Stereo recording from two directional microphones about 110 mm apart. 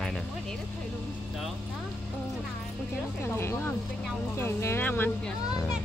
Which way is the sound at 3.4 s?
20° left (ahead or behind).